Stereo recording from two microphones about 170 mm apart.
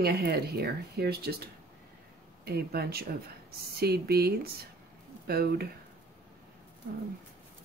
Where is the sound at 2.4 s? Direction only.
70° right (ahead or behind).